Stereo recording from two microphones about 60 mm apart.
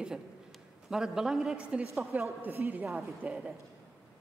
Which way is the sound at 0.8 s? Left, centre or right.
Centre.